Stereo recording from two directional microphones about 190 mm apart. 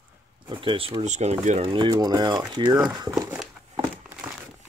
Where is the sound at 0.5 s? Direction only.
25° right (ahead or behind).